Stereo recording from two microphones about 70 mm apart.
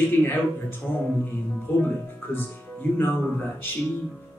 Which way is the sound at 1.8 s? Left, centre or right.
Left.